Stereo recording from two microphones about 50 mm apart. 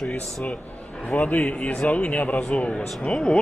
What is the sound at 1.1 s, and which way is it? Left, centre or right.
A man's voice, left.